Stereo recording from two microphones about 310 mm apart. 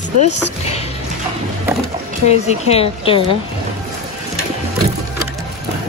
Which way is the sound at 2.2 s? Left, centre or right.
Centre.